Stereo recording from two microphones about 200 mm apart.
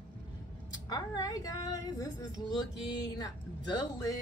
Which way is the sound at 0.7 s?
20° left (ahead or behind).